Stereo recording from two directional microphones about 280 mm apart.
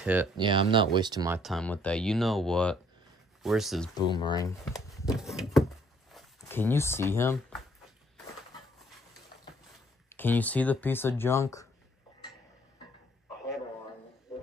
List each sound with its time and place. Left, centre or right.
0.0 s speech: centre
0.4 s speech: centre
1.4 s speech: centre
3.9 s speech: centre
5.1 s speech: centre
10.1 s speech: centre